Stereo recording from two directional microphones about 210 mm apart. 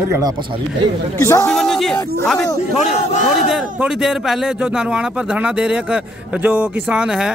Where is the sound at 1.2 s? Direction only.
15° left (ahead or behind).